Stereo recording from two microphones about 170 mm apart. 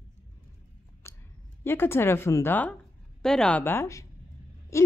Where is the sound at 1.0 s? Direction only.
15° left (ahead or behind).